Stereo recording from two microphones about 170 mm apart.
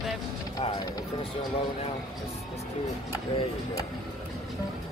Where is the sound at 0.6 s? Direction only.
25° left (ahead or behind).